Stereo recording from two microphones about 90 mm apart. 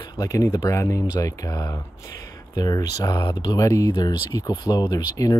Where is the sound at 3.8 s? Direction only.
45° left (ahead or behind).